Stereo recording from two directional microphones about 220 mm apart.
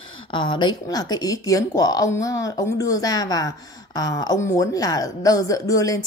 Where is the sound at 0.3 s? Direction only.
20° left (ahead or behind).